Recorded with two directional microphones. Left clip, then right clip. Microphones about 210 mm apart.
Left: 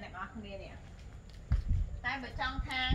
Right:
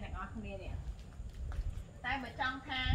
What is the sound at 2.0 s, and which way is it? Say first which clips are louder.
Speech: left 1 dB; 25° left (ahead or behind).